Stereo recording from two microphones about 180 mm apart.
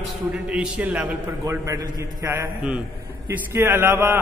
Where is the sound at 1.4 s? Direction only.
20° right (ahead or behind).